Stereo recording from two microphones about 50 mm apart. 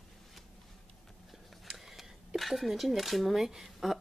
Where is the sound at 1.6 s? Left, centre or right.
Centre.